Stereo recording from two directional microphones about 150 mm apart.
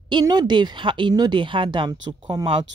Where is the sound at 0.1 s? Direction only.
30° right (ahead or behind).